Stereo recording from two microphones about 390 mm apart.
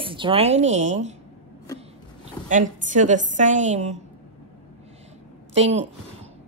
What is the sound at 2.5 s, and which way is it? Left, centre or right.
A woman's voice, centre.